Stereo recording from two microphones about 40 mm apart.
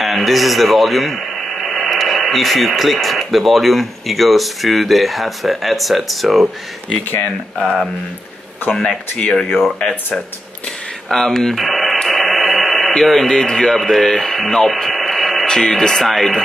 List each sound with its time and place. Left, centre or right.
0.0 s speech: centre
7.5 s speech: centre
9.3 s speech: centre
11.1 s radio: centre
13.0 s speech: centre
13.3 s speech: centre
15.4 s speech: centre